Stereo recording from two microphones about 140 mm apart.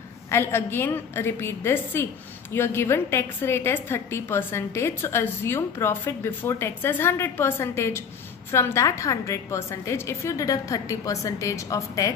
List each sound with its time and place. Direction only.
0.3 s a woman's voice: 15° left (ahead or behind)